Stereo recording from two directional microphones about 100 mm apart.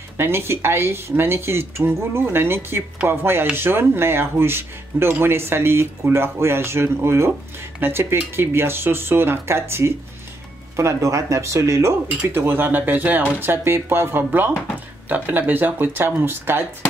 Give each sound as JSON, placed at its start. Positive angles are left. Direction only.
{"t": 0.2, "sound": "speech", "side_deg": -25}